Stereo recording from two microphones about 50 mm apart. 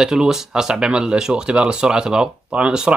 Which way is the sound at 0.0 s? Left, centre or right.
Centre.